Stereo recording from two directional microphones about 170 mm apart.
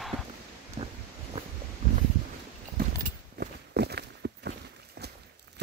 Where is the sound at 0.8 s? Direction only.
30° right (ahead or behind).